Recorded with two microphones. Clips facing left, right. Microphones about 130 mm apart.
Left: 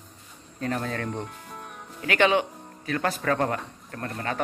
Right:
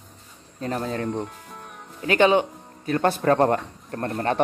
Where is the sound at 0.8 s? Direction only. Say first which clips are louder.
Right 4 dB; 20° right (ahead or behind).